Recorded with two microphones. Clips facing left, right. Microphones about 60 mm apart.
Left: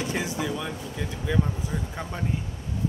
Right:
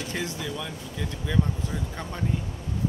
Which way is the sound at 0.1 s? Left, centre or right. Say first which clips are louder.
Left 3 dB; centre.